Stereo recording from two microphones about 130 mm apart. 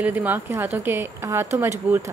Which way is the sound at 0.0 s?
15° right (ahead or behind).